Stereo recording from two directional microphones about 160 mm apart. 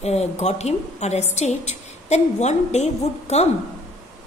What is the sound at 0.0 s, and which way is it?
A woman's voice, 40° left (ahead or behind).